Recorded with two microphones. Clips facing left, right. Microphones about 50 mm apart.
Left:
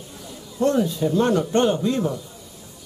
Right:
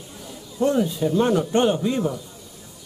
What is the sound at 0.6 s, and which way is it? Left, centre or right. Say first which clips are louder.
Speech: even; centre.